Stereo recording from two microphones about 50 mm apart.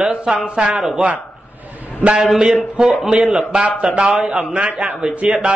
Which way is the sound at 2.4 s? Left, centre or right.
Centre.